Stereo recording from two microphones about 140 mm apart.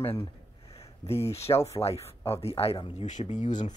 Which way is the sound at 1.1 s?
45° left (ahead or behind).